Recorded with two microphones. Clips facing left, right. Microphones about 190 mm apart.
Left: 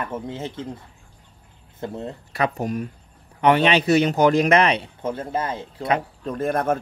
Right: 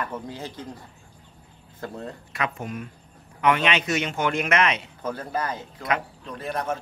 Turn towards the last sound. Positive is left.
turn(degrees=55)  # may be behind; listen again after turning